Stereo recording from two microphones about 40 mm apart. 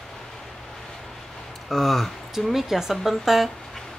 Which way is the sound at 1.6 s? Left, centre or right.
Centre.